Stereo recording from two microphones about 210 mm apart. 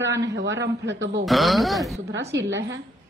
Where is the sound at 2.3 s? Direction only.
60° right (ahead or behind).